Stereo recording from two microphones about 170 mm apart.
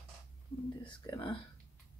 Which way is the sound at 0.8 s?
30° left (ahead or behind).